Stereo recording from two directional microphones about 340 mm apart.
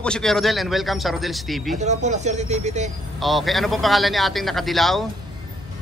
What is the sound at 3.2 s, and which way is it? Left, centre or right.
A man's voice, centre.